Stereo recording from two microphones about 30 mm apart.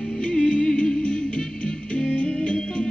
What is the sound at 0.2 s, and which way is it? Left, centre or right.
Music, left.